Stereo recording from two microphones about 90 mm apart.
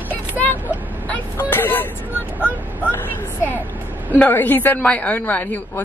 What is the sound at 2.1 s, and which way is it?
Speech, 15° right (ahead or behind).